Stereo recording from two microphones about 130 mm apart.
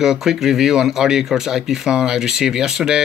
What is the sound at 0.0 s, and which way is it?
Speech, 5° right (ahead or behind).